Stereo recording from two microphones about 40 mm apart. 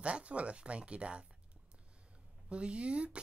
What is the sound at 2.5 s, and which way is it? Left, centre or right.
Speech, right.